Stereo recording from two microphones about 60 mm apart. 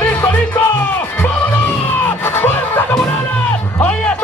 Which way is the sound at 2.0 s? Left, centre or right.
Left.